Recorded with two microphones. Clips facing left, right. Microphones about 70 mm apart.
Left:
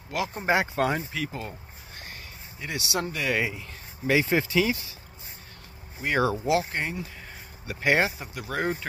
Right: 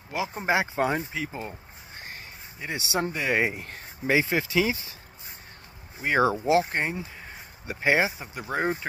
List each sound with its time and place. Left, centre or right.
0.1 s speech: centre
2.6 s speech: right
3.4 s speech: right
4.3 s speech: centre
6.0 s speech: centre
6.4 s speech: right
7.7 s speech: centre
8.4 s speech: right